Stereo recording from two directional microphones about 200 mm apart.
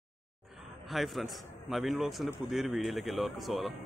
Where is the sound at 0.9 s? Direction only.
Centre (ahead or behind).